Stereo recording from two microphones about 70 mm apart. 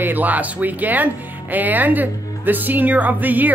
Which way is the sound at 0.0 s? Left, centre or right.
Right.